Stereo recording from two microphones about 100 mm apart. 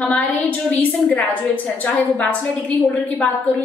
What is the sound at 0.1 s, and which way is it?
A woman's voice, 15° left (ahead or behind).